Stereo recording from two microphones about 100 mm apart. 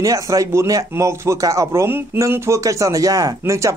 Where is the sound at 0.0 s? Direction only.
35° right (ahead or behind).